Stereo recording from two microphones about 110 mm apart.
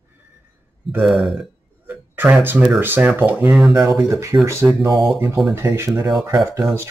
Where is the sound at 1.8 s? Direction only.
15° right (ahead or behind).